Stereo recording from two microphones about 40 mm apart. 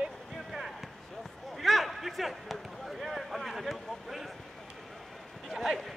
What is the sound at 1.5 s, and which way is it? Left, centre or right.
Speech, centre.